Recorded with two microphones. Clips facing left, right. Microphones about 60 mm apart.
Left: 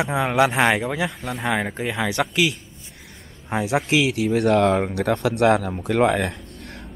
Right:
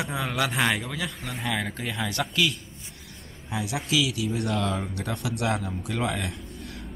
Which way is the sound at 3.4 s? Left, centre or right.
Left.